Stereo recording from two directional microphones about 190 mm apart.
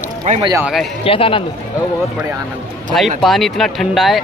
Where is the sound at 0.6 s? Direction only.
5° right (ahead or behind).